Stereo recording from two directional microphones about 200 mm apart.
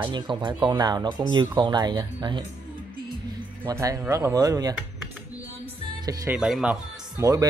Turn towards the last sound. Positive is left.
turn(degrees=-15)  # may be behind; listen again after turning